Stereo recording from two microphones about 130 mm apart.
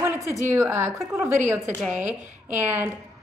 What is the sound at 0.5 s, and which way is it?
A woman's voice, 15° right (ahead or behind).